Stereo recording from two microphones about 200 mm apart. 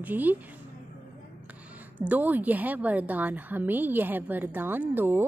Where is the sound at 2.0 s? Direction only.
10° right (ahead or behind).